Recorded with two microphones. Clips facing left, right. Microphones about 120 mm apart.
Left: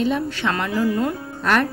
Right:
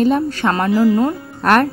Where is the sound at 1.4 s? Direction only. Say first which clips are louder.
Right 6 dB; 55° right (ahead or behind).